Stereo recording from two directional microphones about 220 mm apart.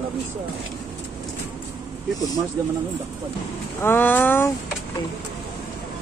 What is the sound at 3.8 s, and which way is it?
Speech, 10° left (ahead or behind).